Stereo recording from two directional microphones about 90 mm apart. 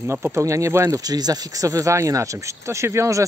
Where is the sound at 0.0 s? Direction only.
30° right (ahead or behind).